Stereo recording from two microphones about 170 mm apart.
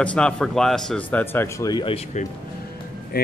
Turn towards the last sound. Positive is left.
turn(degrees=65)  # may be behind; listen again after turning